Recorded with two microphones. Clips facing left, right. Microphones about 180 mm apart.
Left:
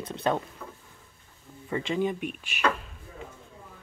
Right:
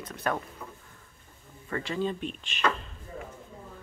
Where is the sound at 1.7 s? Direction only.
15° left (ahead or behind).